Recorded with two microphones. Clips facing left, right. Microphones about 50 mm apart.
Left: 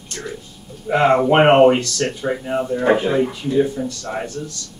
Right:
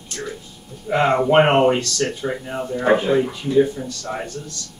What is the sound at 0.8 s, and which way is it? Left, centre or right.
Speech, centre.